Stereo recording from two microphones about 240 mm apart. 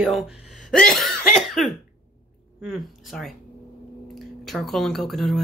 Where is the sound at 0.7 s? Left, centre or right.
Centre.